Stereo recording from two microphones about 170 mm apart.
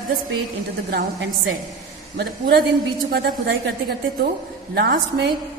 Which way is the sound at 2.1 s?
75° right (ahead or behind).